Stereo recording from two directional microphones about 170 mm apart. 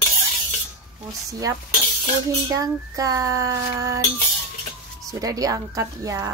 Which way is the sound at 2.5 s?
20° right (ahead or behind).